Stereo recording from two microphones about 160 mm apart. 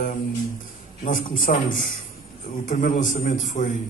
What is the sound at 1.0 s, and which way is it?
A man's voice, 60° left (ahead or behind).